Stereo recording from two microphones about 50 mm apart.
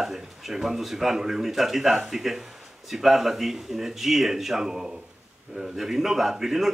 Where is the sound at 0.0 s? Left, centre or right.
Centre.